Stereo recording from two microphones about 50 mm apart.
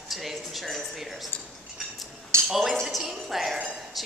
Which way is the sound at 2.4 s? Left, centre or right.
Centre.